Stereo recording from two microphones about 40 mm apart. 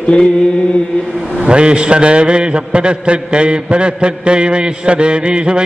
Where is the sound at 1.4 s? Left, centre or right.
Right.